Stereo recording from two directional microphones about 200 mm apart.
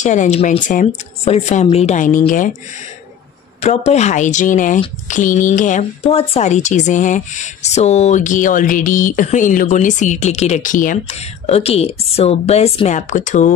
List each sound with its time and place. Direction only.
0.0 s speech: 35° left (ahead or behind)
3.6 s speech: 35° left (ahead or behind)